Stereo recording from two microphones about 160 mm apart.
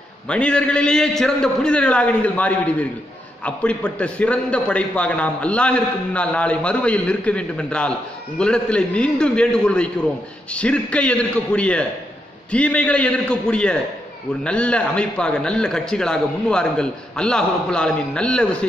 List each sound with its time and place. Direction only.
0.3 s a man's voice: 5° left (ahead or behind)